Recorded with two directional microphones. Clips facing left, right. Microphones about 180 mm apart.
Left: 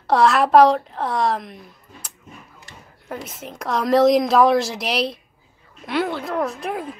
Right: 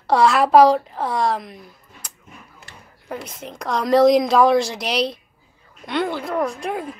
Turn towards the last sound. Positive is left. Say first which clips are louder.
# right 1 dB
turn(degrees=0)  # may be behind; listen again after turning